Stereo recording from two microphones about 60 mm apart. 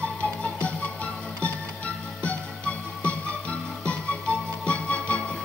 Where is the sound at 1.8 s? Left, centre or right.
Left.